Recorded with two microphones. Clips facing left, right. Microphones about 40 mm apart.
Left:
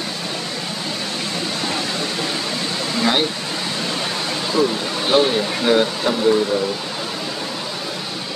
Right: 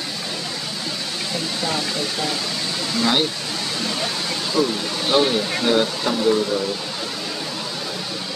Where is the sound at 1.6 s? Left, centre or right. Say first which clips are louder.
Right 1 dB; centre.